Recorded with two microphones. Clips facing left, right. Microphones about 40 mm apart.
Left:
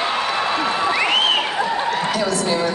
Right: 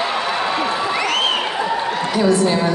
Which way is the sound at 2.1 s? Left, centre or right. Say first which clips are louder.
Right 4 dB; centre.